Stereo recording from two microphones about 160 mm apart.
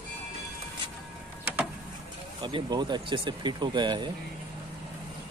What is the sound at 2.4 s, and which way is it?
Speech, 30° right (ahead or behind).